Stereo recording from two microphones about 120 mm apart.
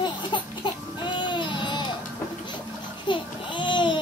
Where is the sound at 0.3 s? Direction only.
40° left (ahead or behind).